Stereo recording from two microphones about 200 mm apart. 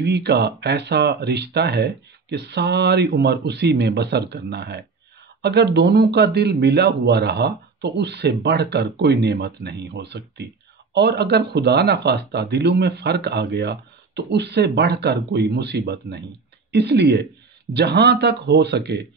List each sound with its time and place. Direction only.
0.0 s speech: 55° right (ahead or behind)